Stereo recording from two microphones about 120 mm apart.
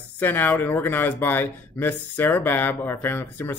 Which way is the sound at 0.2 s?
15° left (ahead or behind).